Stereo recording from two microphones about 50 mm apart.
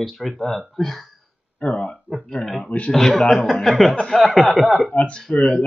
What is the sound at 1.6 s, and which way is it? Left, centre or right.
Speech, left.